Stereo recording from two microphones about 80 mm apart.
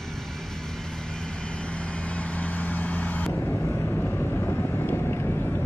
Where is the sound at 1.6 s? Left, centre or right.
Centre.